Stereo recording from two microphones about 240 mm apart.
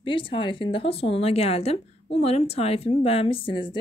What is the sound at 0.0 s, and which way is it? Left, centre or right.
Speech, left.